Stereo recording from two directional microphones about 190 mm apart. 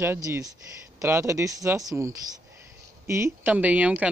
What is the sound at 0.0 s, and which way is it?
Speech, 10° right (ahead or behind).